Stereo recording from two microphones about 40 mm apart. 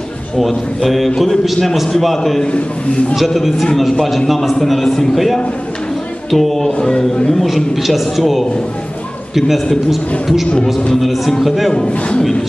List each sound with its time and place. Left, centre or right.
0.4 s a man's voice: centre
2.4 s a man's voice: left
3.2 s a man's voice: centre
6.8 s speech: left
7.4 s a man's voice: centre
9.7 s a man's voice: centre
10.5 s a man's voice: left
11.0 s a man's voice: centre